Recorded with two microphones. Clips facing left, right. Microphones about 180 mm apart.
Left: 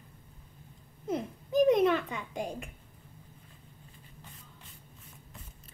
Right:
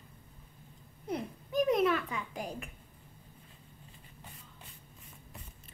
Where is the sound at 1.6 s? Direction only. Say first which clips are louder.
Left 4 dB; 25° left (ahead or behind).